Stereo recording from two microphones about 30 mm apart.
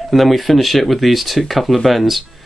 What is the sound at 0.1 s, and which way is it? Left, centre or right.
Speech, centre.